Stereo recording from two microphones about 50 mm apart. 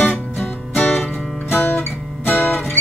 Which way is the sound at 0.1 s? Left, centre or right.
Left.